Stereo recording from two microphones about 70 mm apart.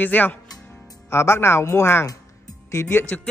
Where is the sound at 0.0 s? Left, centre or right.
Left.